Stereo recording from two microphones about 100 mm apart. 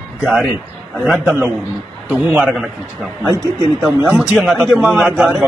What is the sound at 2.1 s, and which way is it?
Speech, 15° right (ahead or behind).